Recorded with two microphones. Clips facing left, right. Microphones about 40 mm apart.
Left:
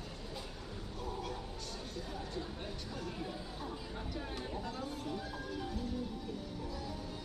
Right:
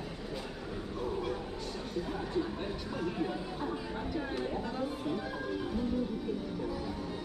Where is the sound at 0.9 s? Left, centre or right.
Right.